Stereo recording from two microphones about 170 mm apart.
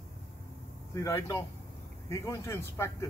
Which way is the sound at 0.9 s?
15° left (ahead or behind).